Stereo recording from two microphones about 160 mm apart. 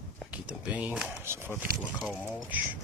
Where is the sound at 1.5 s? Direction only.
5° left (ahead or behind).